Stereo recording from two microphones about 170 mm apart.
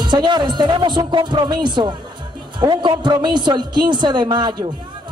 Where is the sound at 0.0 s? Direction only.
25° right (ahead or behind).